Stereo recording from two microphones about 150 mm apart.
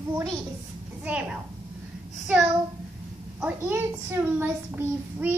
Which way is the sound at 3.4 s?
15° right (ahead or behind).